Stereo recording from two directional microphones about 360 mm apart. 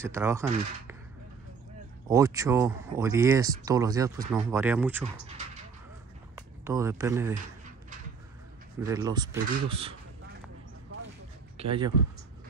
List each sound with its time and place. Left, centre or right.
0.0 s speech: centre
2.0 s speech: centre
6.3 s speech: centre
8.8 s speech: centre
11.5 s a man's voice: centre